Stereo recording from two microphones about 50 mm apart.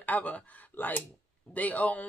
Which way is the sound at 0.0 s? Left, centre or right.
Left.